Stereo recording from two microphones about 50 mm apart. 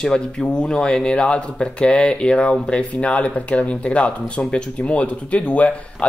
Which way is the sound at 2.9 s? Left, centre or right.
Left.